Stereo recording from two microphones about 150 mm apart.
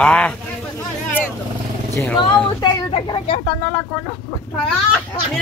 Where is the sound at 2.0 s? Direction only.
10° left (ahead or behind).